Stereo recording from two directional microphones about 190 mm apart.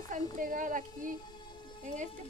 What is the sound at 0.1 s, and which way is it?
Speech, 45° right (ahead or behind).